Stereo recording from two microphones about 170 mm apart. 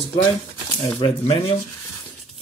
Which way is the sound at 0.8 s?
25° left (ahead or behind).